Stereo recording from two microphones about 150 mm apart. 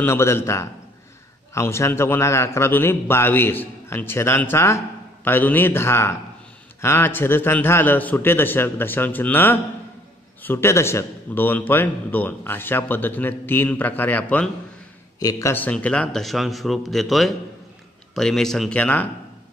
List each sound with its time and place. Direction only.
0.0 s a man's voice: 15° left (ahead or behind)
15.1 s speech: 20° left (ahead or behind)